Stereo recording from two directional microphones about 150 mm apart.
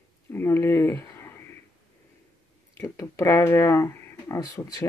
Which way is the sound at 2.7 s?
20° left (ahead or behind).